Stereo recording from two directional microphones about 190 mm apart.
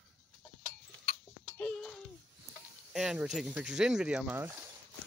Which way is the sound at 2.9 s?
5° right (ahead or behind).